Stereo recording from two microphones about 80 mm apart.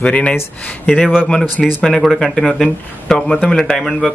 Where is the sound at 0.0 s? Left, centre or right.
Centre.